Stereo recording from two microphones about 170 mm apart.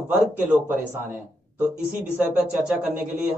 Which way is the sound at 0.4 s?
10° right (ahead or behind).